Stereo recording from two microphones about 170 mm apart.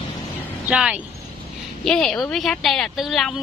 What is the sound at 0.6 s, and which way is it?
A woman's voice, 5° right (ahead or behind).